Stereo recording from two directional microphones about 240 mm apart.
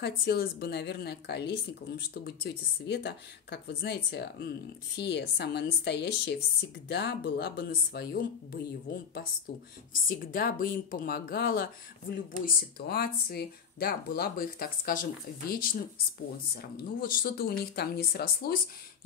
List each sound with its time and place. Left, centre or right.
0.0 s speech: left
2.9 s speech: left
10.0 s speech: left
16.7 s speech: left